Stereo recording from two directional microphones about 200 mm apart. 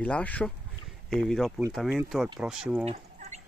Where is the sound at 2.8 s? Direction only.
35° right (ahead or behind).